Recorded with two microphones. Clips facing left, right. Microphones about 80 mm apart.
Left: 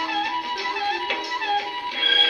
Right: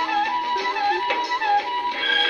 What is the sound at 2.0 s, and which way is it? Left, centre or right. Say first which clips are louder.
Music: right 2 dB; right.